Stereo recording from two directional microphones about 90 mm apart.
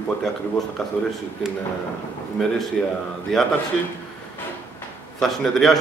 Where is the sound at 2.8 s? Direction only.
5° left (ahead or behind).